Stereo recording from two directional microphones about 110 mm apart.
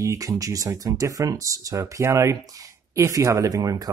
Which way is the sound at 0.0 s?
30° right (ahead or behind).